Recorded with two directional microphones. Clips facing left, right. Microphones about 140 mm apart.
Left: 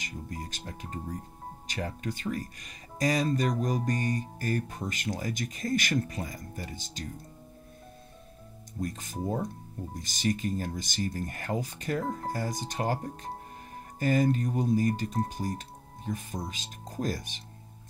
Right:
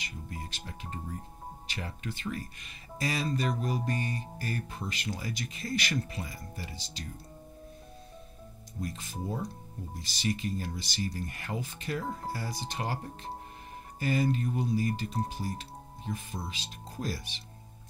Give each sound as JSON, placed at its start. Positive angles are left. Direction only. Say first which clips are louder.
{"t": 0.0, "sound": "music", "louder": "left 3 dB", "side_deg": 40}
{"t": 1.7, "sound": "speech", "louder": "left 6 dB", "side_deg": 40}
{"t": 8.8, "sound": "speech", "louder": "left 4 dB", "side_deg": 45}